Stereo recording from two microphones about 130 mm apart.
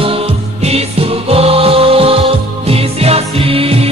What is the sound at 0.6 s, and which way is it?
Music, 50° right (ahead or behind).